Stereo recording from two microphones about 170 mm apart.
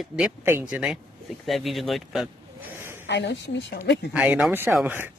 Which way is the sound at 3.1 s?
85° left.